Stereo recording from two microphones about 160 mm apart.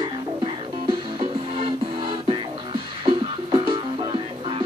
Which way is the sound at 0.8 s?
30° right (ahead or behind).